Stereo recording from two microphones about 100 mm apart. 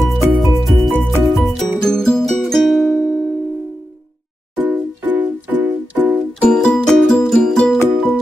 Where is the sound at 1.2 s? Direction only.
Centre (ahead or behind).